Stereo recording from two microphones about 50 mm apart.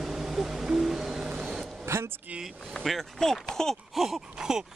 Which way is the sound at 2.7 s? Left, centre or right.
Centre.